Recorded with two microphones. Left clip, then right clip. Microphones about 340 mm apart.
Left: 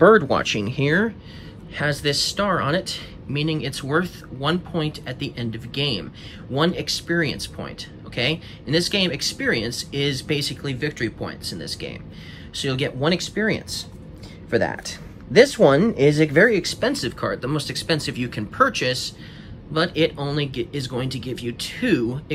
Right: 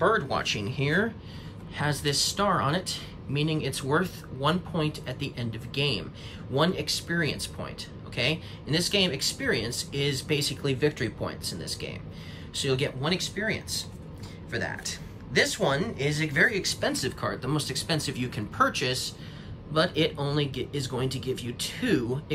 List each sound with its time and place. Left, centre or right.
0.1 s speech: centre